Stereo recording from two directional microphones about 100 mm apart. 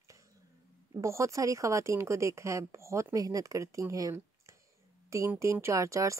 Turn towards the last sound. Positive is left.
turn(degrees=-30)  # may be behind; listen again after turning